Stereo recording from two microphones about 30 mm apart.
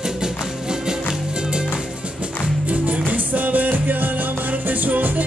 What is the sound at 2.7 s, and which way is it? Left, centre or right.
Music, right.